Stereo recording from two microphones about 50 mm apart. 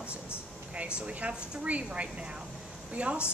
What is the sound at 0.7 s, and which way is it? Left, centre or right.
A woman's voice, right.